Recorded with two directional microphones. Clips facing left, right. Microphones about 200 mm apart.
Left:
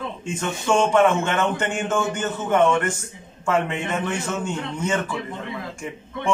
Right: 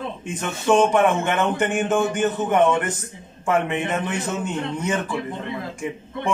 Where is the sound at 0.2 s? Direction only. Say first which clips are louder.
Left 1 dB; 15° right (ahead or behind).